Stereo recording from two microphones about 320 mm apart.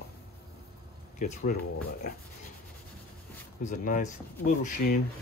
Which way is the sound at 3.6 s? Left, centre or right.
Left.